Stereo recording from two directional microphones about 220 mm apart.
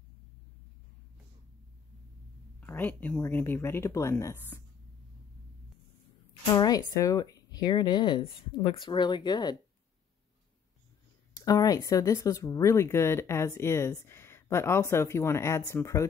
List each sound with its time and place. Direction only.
2.6 s speech: 10° left (ahead or behind)
6.4 s speech: 15° left (ahead or behind)
11.3 s speech: 15° left (ahead or behind)